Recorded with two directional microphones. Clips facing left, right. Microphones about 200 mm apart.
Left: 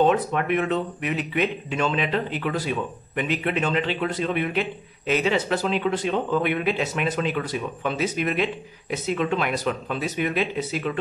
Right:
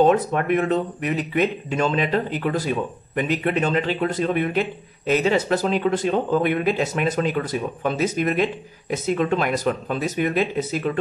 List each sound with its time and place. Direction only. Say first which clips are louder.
0.0 s speech: right 3 dB; 40° right (ahead or behind)